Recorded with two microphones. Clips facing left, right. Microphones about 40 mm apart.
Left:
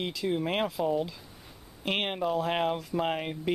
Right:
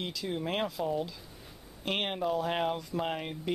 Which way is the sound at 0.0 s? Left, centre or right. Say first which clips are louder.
Left 5 dB; centre.